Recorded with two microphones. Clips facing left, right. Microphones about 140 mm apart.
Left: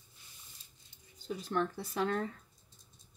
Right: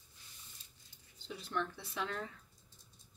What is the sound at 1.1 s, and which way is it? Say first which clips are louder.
Speech: left 5 dB; 40° left (ahead or behind).